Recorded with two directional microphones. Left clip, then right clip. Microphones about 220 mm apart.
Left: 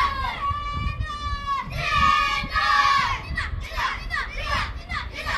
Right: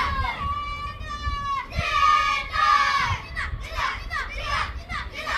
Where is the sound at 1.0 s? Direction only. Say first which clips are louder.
Right 1 dB; 25° left (ahead or behind).